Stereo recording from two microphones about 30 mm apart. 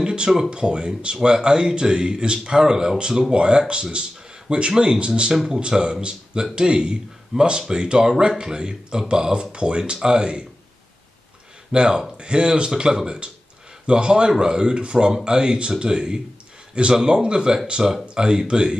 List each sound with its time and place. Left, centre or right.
0.0 s a sound: right
0.5 s speech: right
11.7 s speech: right
17.8 s speech: centre